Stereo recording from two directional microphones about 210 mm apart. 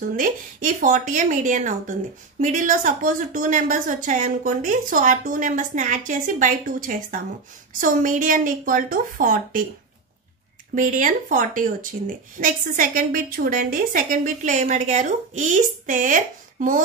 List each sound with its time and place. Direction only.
0.0 s a woman's voice: 40° right (ahead or behind)
10.7 s a woman's voice: 40° right (ahead or behind)